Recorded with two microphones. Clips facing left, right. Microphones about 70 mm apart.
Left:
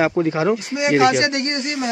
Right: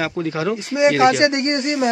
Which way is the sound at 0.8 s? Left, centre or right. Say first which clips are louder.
Right 1 dB; centre.